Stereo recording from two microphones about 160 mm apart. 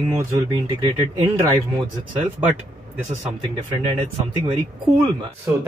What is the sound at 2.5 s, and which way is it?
Speech, 10° right (ahead or behind).